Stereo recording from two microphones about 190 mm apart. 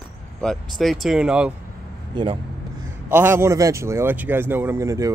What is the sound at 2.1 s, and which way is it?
Speech, 25° right (ahead or behind).